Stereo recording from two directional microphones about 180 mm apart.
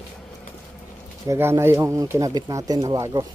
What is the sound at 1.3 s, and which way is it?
Speech, 15° right (ahead or behind).